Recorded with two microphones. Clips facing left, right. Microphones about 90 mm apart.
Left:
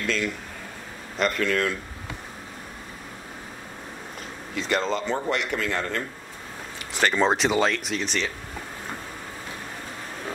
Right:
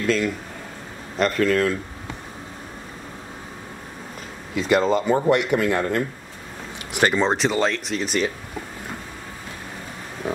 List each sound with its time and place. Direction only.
0.0 s speech: centre (ahead or behind)
4.6 s speech: 5° right (ahead or behind)
7.2 s speech: centre (ahead or behind)
10.2 s a sound: 15° right (ahead or behind)